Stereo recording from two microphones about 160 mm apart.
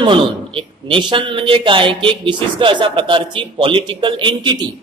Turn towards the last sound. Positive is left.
turn(degrees=-25)  # may be behind; listen again after turning